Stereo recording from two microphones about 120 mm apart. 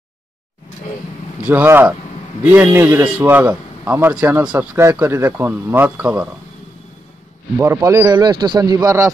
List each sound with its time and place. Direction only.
1.4 s a man's voice: 15° right (ahead or behind)
7.5 s a man's voice: 20° right (ahead or behind)